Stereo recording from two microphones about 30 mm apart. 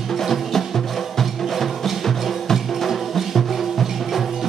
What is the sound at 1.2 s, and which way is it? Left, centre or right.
Music, centre.